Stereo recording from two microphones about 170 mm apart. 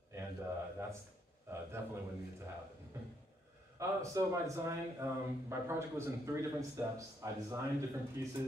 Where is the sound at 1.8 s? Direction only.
15° right (ahead or behind).